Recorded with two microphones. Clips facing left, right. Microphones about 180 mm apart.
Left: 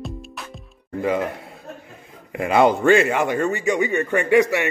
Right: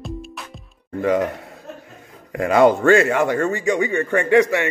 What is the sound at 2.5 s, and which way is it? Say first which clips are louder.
A man's voice: right 2 dB; 15° left (ahead or behind).